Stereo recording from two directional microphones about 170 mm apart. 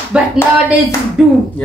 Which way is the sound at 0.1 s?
5° right (ahead or behind).